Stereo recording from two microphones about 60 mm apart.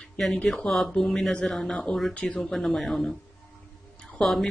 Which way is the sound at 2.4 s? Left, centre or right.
Centre.